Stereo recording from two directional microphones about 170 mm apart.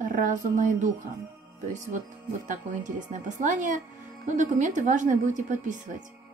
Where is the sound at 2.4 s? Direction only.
50° right (ahead or behind).